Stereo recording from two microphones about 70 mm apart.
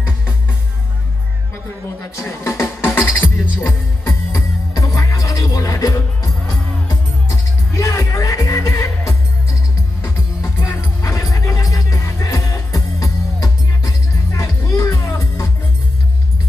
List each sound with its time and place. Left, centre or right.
2.1 s music: left
4.7 s music: left
10.0 s music: left